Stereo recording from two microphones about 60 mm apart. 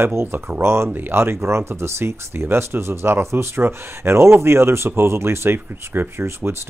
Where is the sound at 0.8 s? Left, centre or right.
Right.